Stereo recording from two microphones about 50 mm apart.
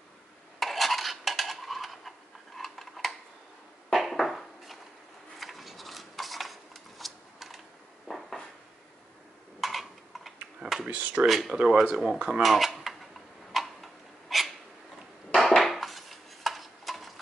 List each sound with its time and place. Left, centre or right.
0.6 s cutlery: centre
3.9 s a sound: centre
9.6 s a sound: centre
10.9 s speech: right
11.2 s speech: centre
11.5 s speech: right
12.4 s cutlery: centre
14.3 s dog: centre
15.3 s a sound: centre